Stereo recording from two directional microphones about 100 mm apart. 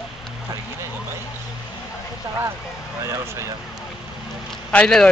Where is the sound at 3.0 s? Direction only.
30° right (ahead or behind).